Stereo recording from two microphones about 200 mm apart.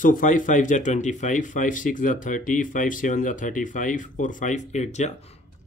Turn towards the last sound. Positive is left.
turn(degrees=35)  # may be behind; listen again after turning